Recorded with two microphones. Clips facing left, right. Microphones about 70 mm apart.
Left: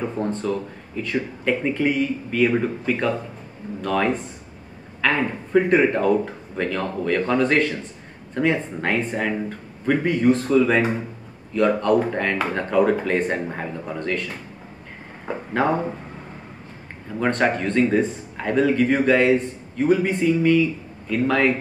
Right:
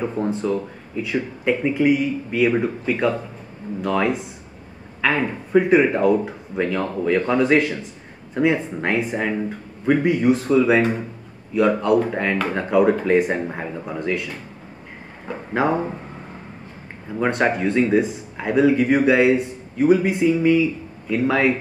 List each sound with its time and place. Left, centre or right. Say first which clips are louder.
0.0 s speech: right 2 dB; centre
15.5 s speech: right 1 dB; centre
17.1 s speech: right 1 dB; centre